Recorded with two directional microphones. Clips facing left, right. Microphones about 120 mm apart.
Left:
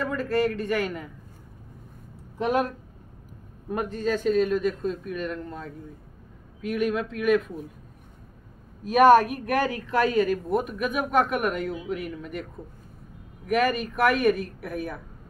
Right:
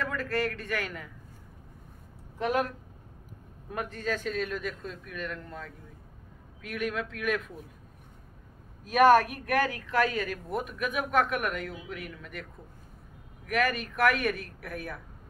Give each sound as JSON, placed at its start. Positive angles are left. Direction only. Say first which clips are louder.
{"t": 0.0, "sound": "a man's voice", "louder": "left 6 dB", "side_deg": 25}
{"t": 2.3, "sound": "speech", "louder": "left 4 dB", "side_deg": 20}
{"t": 3.7, "sound": "a woman's voice", "louder": "left 6 dB", "side_deg": 25}
{"t": 8.9, "sound": "a woman's voice", "louder": "left 4 dB", "side_deg": 15}
{"t": 13.5, "sound": "a man's voice", "louder": "left 5 dB", "side_deg": 20}